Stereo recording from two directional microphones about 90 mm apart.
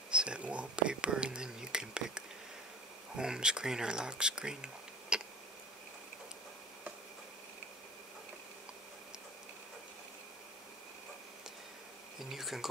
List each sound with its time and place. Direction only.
0.1 s speech: 10° right (ahead or behind)
5.1 s insect: 10° right (ahead or behind)
12.2 s a sound: centre (ahead or behind)